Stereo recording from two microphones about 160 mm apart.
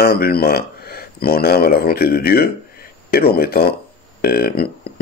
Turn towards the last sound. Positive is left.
turn(degrees=70)  # may be behind; listen again after turning